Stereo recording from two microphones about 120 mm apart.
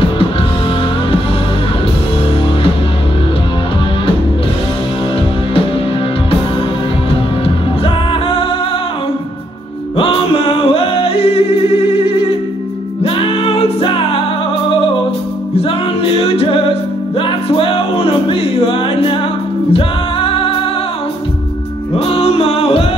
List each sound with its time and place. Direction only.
7.1 s music: 50° left (ahead or behind)
9.9 s music: 50° left (ahead or behind)
15.5 s music: 50° left (ahead or behind)
21.9 s music: 55° left (ahead or behind)